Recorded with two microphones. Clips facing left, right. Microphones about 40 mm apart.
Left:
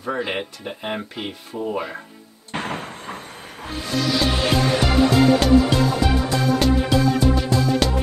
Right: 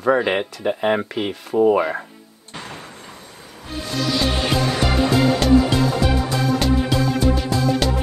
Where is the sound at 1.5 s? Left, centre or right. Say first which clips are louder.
Right 12 dB; right.